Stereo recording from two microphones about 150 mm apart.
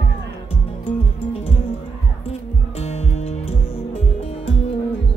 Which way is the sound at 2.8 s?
45° left (ahead or behind).